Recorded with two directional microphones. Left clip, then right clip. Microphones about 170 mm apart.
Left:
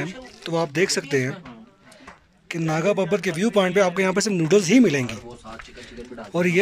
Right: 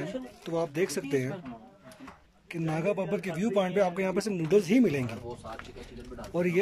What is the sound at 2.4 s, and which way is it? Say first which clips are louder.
Speech: left 8 dB; 10° right (ahead or behind).